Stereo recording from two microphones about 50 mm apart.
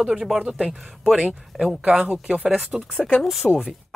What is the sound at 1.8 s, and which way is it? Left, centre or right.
Speech, right.